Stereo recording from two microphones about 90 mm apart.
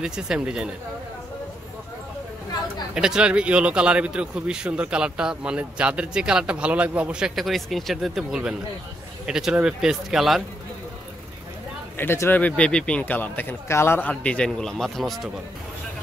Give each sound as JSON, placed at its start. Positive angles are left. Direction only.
{"t": 0.0, "sound": "a man's voice", "side_deg": -10}
{"t": 2.9, "sound": "a man's voice", "side_deg": -10}
{"t": 12.0, "sound": "speech", "side_deg": 25}